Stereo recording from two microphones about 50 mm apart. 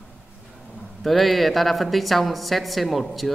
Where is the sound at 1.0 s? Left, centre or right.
Centre.